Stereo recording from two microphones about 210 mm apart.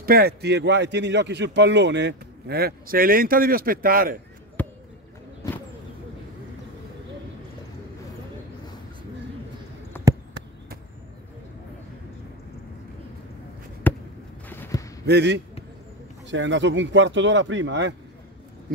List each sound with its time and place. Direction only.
0.0 s speech: 45° right (ahead or behind)
4.6 s basketball bounce: 10° left (ahead or behind)
9.9 s a sound: 10° left (ahead or behind)
13.9 s basketball bounce: 10° left (ahead or behind)
14.5 s a sound: 10° left (ahead or behind)
15.0 s a man's voice: 55° right (ahead or behind)